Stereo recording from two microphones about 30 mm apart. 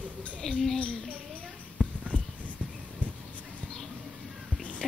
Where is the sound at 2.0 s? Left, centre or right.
Right.